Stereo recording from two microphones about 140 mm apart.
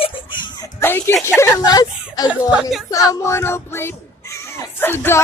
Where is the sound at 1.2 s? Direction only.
20° left (ahead or behind).